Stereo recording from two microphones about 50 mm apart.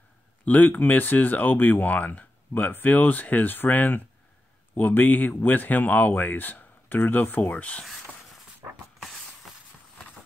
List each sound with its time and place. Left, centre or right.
0.5 s speech: left
7.5 s speech: left
9.0 s a sound: centre